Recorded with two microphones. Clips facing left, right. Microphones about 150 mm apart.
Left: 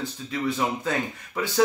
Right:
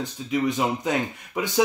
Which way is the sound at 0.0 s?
15° right (ahead or behind).